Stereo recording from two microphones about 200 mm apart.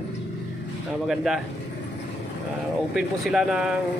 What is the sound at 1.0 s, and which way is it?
Speech, centre (ahead or behind).